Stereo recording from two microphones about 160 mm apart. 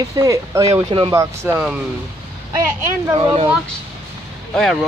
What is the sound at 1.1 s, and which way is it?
Speech, 15° right (ahead or behind).